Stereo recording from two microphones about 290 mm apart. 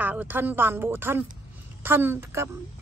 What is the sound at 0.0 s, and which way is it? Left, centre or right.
A woman's voice, centre.